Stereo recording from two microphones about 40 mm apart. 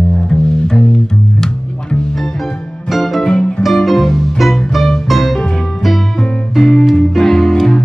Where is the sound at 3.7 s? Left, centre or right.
Centre.